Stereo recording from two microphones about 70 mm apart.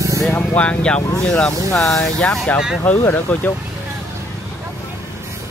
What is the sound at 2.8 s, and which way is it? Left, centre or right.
Speech, left.